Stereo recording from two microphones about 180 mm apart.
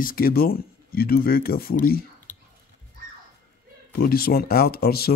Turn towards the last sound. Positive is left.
turn(degrees=60)  # may be behind; listen again after turning